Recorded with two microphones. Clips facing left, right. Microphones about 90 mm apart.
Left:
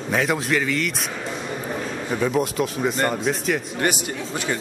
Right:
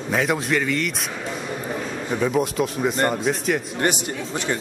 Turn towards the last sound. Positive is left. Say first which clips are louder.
# right 1 dB
turn(degrees=0)  # may be behind; listen again after turning